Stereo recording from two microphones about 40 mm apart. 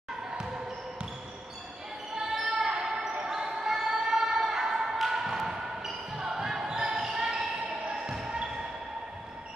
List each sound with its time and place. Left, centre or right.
2.6 s basketball bounce: centre